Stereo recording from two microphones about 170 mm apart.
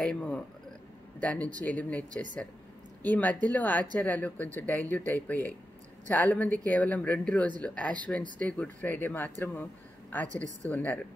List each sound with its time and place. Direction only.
0.0 s a man's voice: 5° left (ahead or behind)
10.2 s a woman's voice: 45° right (ahead or behind)
10.6 s speech: 10° left (ahead or behind)